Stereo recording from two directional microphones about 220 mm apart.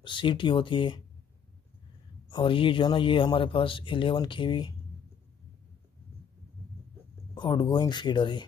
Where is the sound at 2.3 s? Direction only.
25° left (ahead or behind).